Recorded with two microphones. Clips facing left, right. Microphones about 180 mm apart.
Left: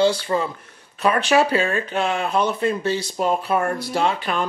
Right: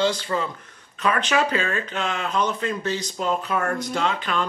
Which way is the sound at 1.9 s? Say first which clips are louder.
Left 5 dB; 10° left (ahead or behind).